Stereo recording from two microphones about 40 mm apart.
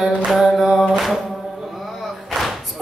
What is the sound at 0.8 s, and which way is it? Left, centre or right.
Mantra, centre.